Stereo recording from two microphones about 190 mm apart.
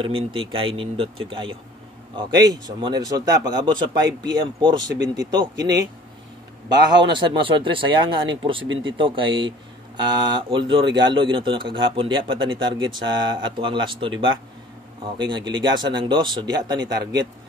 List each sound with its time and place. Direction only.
0.0 s speech: 30° right (ahead or behind)
7.1 s speech: 25° right (ahead or behind)
17.0 s a man's voice: 70° right (ahead or behind)